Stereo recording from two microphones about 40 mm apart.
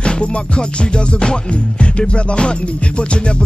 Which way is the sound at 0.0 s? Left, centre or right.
Left.